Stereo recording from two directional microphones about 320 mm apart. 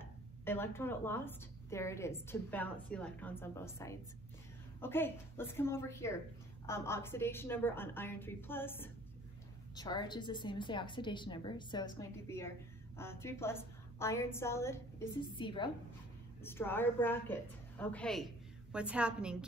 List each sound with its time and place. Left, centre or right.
0.0 s a woman's voice: centre